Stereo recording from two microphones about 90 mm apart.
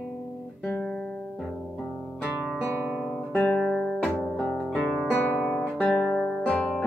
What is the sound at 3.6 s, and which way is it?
Guitar, 5° left (ahead or behind).